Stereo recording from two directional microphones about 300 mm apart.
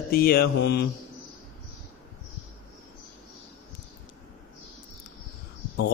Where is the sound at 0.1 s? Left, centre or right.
Left.